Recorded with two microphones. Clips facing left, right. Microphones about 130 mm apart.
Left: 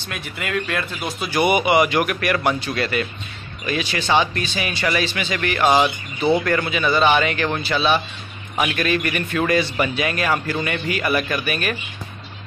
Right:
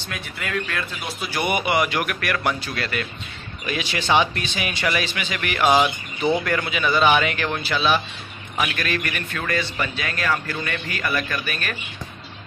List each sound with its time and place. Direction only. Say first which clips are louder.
0.4 s speech: left 3 dB; 5° left (ahead or behind)
3.6 s a man's voice: left 2 dB; 10° right (ahead or behind)
5.8 s speech: left 1 dB; 10° left (ahead or behind)
6.4 s speech: left 3 dB; centre (ahead or behind)